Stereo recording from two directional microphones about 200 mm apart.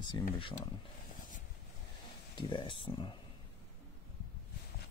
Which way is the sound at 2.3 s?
25° left (ahead or behind).